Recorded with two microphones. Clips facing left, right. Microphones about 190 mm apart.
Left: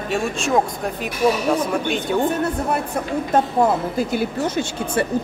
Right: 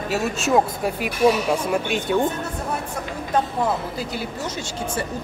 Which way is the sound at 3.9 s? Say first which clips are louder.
Left 7 dB; 55° left (ahead or behind).